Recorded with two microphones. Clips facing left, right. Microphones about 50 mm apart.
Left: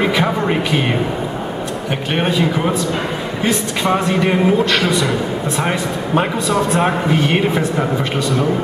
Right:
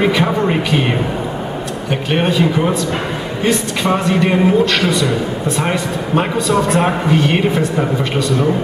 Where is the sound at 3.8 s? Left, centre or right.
Centre.